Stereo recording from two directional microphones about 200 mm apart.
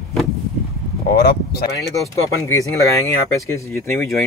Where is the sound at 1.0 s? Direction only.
50° left (ahead or behind).